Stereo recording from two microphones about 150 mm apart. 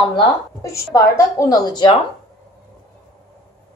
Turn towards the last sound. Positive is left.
turn(degrees=30)  # may be behind; listen again after turning